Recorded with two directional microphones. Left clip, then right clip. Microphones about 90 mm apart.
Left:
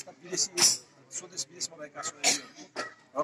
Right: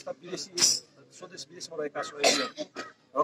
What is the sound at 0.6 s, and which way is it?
Speech, 35° left (ahead or behind).